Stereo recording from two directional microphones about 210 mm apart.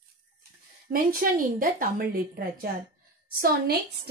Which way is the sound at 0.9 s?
40° right (ahead or behind).